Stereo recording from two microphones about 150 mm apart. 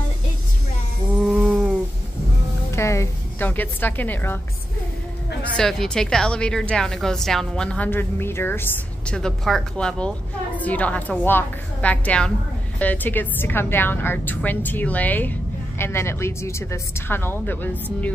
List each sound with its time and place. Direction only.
1.2 s goat: 10° right (ahead or behind)
2.7 s a woman's voice: 20° left (ahead or behind)
5.6 s a woman's voice: 5° left (ahead or behind)